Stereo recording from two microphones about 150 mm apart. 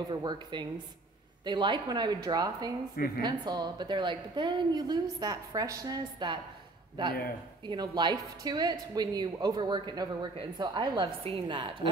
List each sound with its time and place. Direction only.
0.1 s a woman's voice: 30° right (ahead or behind)
7.6 s a woman's voice: 30° right (ahead or behind)